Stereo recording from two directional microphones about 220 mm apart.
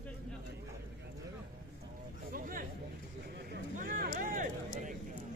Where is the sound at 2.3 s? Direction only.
40° right (ahead or behind).